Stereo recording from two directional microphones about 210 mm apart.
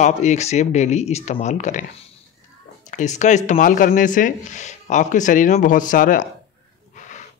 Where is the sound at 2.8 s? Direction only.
35° left (ahead or behind).